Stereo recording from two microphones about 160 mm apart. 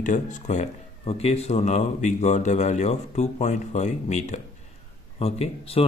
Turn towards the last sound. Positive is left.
turn(degrees=40)  # may be behind; listen again after turning